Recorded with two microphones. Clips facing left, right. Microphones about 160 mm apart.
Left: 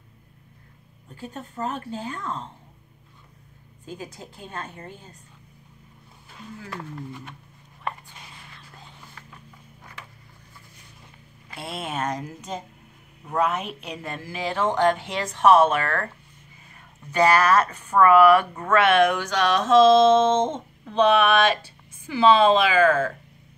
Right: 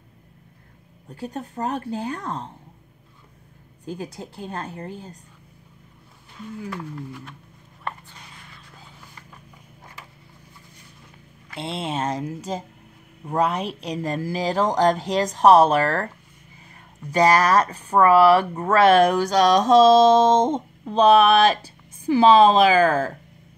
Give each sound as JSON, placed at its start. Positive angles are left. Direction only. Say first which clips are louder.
{"t": 1.2, "sound": "speech", "louder": "right 3 dB", "side_deg": -40}
{"t": 4.1, "sound": "speech", "louder": "right 5 dB", "side_deg": -35}
{"t": 11.5, "sound": "speech", "louder": "right 3 dB", "side_deg": -25}
{"t": 17.1, "sound": "speech", "louder": "right 1 dB", "side_deg": -35}